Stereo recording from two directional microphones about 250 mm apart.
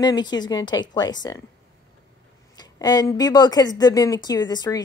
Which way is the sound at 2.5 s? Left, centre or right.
Centre.